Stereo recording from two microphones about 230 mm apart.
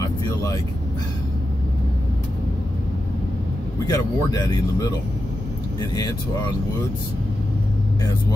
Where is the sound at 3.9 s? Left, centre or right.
Centre.